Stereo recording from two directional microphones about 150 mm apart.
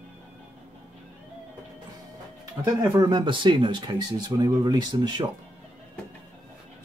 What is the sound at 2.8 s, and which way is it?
Speech, 20° right (ahead or behind).